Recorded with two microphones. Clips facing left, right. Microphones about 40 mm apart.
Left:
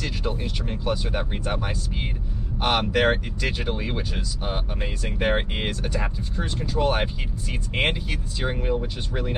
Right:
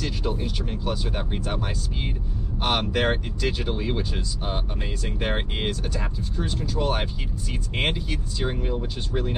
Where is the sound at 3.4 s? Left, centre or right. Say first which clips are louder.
Right 1 dB; centre.